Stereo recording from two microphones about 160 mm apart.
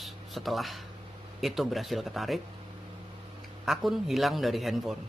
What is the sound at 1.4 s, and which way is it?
Speech, centre (ahead or behind).